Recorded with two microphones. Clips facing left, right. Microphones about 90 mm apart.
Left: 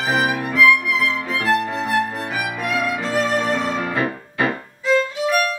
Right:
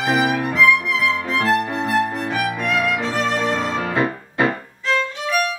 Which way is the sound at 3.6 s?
25° right (ahead or behind).